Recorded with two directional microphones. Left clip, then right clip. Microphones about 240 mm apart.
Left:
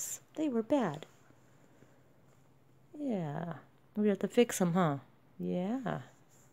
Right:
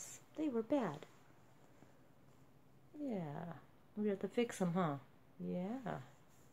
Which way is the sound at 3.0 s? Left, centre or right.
Left.